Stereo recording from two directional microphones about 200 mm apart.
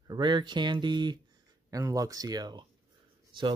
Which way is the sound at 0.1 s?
25° right (ahead or behind).